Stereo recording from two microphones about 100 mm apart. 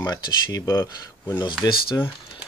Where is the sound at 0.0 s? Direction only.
35° left (ahead or behind).